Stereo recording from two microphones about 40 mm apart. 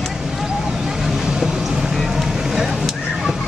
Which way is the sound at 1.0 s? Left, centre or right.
Centre.